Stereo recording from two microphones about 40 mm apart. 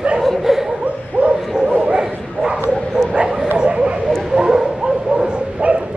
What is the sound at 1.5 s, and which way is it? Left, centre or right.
Bow-wow, centre.